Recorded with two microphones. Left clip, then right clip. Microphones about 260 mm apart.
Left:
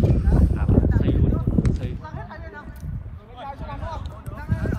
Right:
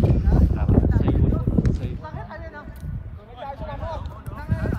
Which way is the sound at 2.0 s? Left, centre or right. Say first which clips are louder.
Right 1 dB; right.